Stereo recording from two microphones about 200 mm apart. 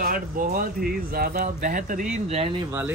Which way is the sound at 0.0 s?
45° right (ahead or behind).